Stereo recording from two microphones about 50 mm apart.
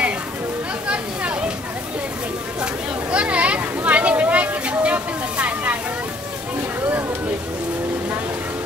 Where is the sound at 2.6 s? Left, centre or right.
Right.